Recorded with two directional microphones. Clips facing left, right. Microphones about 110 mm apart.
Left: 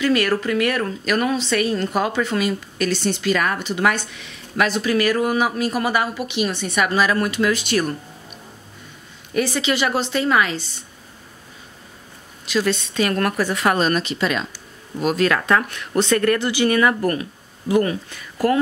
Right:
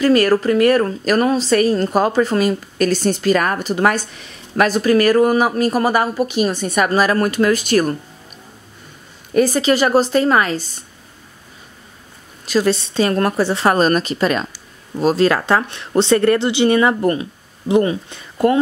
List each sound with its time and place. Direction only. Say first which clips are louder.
0.0 s a woman's voice: right 6 dB; 40° right (ahead or behind)
9.3 s a woman's voice: right 6 dB; 40° right (ahead or behind)
12.4 s a woman's voice: right 4 dB; 35° right (ahead or behind)
13.7 s speech: right 5 dB; 45° right (ahead or behind)
15.0 s speech: right 4 dB; 30° right (ahead or behind)